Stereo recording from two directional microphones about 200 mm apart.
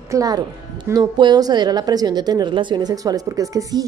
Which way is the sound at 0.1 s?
20° right (ahead or behind).